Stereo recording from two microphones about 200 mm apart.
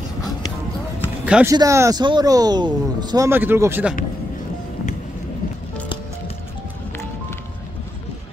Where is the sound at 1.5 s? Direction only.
15° right (ahead or behind).